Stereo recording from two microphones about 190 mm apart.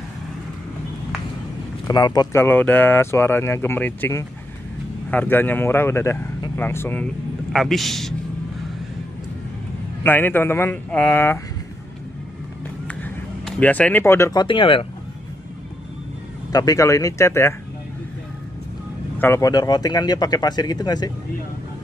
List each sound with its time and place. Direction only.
1.9 s speech: 20° left (ahead or behind)
7.5 s a man's voice: centre (ahead or behind)
10.0 s speech: 10° left (ahead or behind)
12.8 s speech: 5° left (ahead or behind); by 14.9 s 25° left (ahead or behind)
16.5 s speech: 20° left (ahead or behind)
19.1 s speech: 15° left (ahead or behind)